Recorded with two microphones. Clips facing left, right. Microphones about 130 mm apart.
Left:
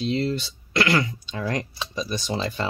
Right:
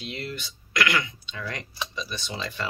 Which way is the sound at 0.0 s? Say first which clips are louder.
Left 11 dB; 30° left (ahead or behind).